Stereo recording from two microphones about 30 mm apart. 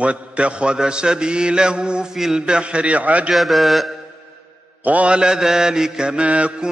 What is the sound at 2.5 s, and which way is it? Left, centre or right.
Speech, right.